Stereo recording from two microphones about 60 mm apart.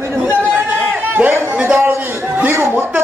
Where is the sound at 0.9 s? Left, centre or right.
Right.